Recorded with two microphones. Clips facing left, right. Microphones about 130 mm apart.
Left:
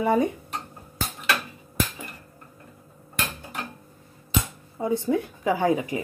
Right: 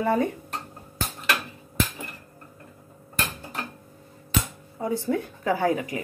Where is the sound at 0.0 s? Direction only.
15° left (ahead or behind).